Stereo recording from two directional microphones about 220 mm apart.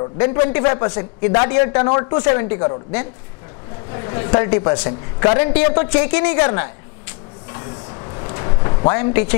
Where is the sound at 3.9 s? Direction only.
20° left (ahead or behind).